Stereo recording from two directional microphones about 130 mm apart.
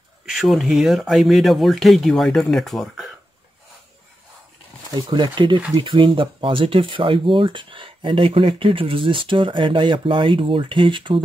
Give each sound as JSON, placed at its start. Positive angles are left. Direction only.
{"t": 0.3, "sound": "speech", "side_deg": 0}
{"t": 4.9, "sound": "speech", "side_deg": -35}